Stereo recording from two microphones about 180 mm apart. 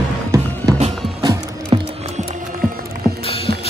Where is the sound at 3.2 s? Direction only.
30° left (ahead or behind).